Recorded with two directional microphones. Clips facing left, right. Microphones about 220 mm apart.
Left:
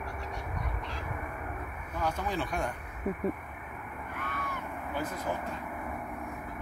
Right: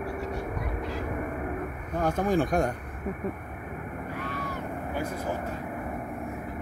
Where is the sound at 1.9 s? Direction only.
50° right (ahead or behind).